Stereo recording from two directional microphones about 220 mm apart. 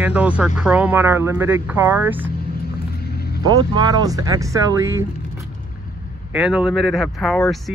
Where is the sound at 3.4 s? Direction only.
20° right (ahead or behind).